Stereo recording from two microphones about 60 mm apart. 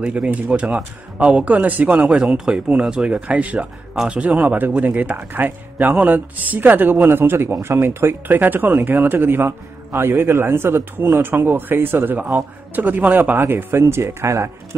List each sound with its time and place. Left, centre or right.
0.0 s speech: centre
3.2 s speech: right